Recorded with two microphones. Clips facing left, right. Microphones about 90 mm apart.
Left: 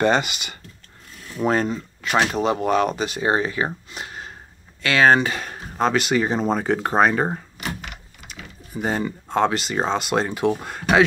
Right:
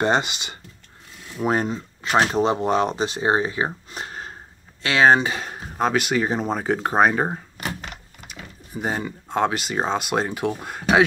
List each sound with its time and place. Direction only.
0.0 s speech: 25° right (ahead or behind)
1.3 s speech: 15° right (ahead or behind)
3.9 s a sound: 40° right (ahead or behind)
4.8 s speech: 25° right (ahead or behind)
5.8 s speech: 5° right (ahead or behind)
8.7 s speech: 10° right (ahead or behind)